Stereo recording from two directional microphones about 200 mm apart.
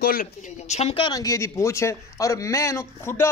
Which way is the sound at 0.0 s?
45° left (ahead or behind).